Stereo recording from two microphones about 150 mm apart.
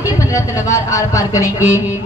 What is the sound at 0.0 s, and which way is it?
Speech, 20° left (ahead or behind).